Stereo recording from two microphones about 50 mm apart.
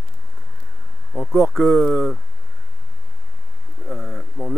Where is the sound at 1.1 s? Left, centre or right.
Centre.